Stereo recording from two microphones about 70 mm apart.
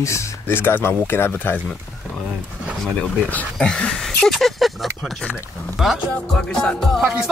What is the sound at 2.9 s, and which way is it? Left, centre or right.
Speech, centre.